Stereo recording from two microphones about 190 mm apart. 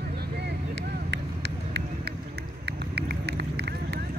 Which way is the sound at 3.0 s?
60° right (ahead or behind).